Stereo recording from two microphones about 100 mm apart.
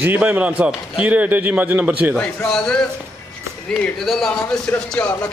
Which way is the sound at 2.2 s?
5° left (ahead or behind).